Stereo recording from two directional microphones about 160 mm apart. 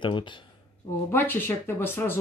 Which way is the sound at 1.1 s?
15° left (ahead or behind).